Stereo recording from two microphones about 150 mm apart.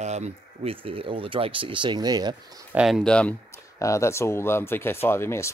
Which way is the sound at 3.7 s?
20° left (ahead or behind).